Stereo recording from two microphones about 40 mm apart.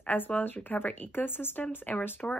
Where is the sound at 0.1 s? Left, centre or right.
Left.